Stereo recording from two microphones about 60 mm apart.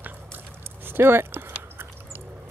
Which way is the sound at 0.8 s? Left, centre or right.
Right.